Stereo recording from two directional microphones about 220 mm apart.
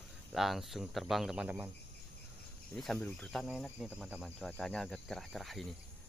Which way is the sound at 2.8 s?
5° left (ahead or behind).